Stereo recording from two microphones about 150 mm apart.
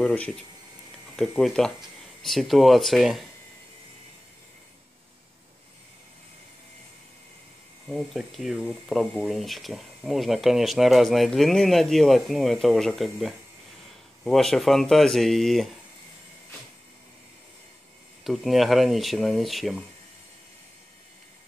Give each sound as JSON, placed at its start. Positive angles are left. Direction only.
{"t": 0.0, "sound": "speech", "side_deg": 10}
{"t": 7.9, "sound": "speech", "side_deg": 0}
{"t": 18.2, "sound": "speech", "side_deg": 0}